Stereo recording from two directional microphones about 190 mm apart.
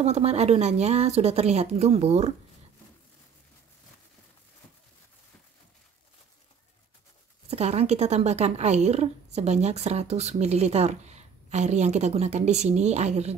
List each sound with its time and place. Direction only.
0.0 s a woman's voice: 35° right (ahead or behind)
7.4 s a woman's voice: 35° right (ahead or behind)